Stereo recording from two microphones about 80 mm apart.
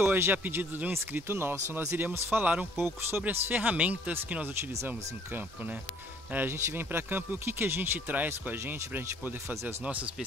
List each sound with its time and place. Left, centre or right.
0.1 s speech: right
2.2 s speech: right
2.8 s speech: right